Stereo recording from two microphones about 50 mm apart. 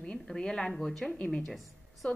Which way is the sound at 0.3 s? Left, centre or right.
Centre.